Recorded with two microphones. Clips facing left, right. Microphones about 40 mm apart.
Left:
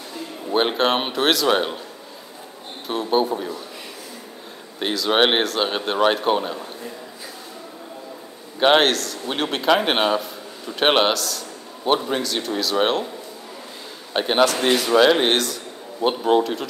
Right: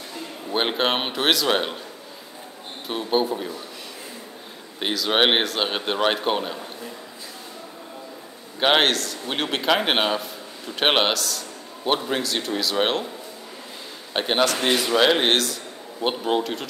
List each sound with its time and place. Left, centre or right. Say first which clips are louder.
0.5 s a man's voice: left 3 dB; centre
2.9 s a man's voice: left 2 dB; centre
4.7 s a man's voice: left 2 dB; centre
8.5 s a man's voice: left 3 dB; centre
14.1 s a man's voice: left 3 dB; centre